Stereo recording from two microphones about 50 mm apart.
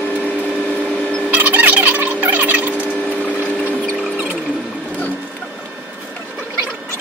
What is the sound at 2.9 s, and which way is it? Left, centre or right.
Sewing machine, left.